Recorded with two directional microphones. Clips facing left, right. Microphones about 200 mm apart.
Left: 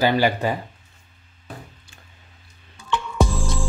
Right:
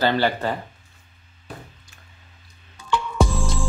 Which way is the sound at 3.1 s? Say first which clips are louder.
Left 1 dB; centre (ahead or behind).